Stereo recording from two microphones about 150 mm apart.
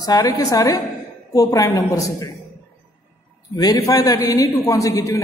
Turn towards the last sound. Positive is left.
turn(degrees=20)  # may be behind; listen again after turning